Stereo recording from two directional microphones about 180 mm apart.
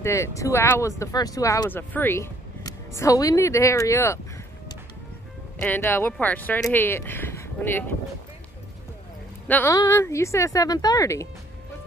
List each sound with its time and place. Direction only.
0.0 s speech: 15° left (ahead or behind)
5.6 s speech: 10° left (ahead or behind)
9.5 s speech: 10° left (ahead or behind)